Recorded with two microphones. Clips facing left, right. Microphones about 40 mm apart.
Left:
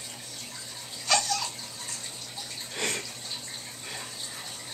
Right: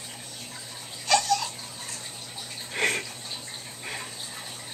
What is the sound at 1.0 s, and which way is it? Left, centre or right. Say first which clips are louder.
Laughter: right 4 dB; centre.